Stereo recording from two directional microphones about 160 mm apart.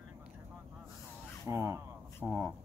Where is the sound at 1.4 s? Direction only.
15° right (ahead or behind).